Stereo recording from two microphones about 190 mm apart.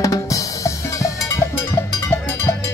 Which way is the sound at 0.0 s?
15° left (ahead or behind).